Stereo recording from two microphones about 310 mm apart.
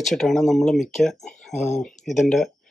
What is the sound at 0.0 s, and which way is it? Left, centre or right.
Speech, centre.